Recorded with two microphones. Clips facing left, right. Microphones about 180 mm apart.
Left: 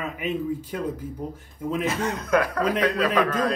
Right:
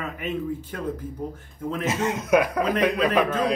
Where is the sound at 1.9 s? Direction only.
20° right (ahead or behind).